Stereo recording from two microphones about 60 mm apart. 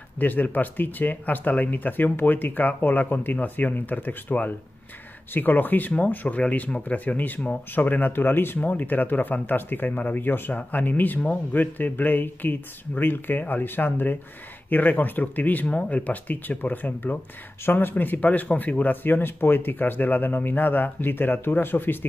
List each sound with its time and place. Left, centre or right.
0.2 s speech: left